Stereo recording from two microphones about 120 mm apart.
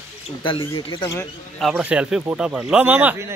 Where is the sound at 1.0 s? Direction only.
30° left (ahead or behind).